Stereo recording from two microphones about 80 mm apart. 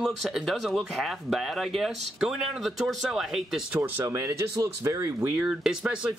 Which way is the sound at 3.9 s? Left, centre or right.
Right.